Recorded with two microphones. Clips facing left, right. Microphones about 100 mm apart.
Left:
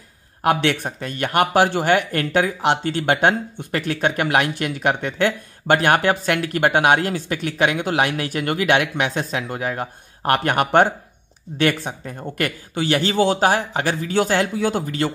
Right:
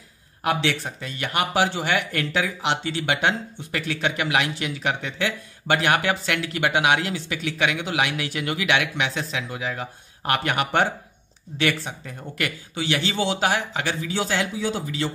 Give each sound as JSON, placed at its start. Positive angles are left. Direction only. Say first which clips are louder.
{"t": 0.4, "sound": "speech", "louder": "left 5 dB", "side_deg": 55}